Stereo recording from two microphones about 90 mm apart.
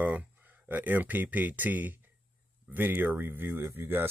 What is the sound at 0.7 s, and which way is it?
Speech, 20° right (ahead or behind).